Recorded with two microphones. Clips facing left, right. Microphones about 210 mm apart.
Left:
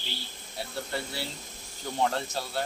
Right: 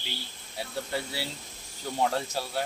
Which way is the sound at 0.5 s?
10° right (ahead or behind).